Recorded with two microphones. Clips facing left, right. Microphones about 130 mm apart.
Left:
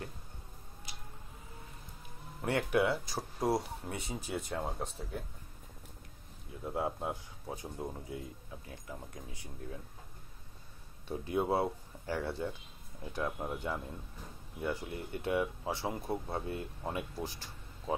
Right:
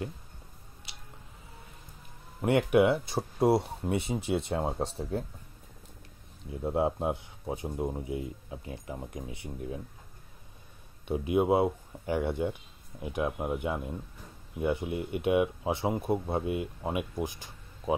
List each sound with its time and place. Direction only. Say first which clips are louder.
2.4 s speech: right 7 dB; 20° right (ahead or behind)
6.6 s speech: right 7 dB; 25° right (ahead or behind)
11.1 s speech: right 7 dB; 15° right (ahead or behind)